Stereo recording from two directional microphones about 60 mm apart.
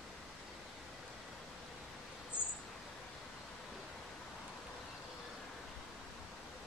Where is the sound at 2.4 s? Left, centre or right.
Centre.